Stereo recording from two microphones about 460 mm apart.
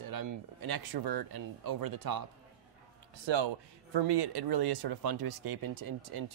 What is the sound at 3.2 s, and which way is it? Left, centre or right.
Speech, right.